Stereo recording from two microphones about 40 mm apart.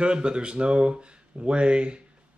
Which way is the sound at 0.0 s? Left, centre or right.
Right.